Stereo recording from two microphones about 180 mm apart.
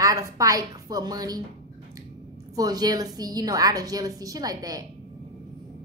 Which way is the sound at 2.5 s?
20° right (ahead or behind).